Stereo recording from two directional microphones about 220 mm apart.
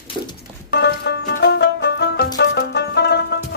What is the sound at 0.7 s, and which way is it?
Music, 50° left (ahead or behind).